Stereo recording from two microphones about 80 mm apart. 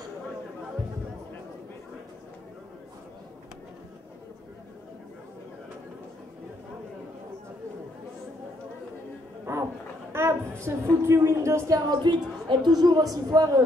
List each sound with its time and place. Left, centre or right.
9.5 s dog: right
10.1 s speech: right
11.9 s a woman's voice: right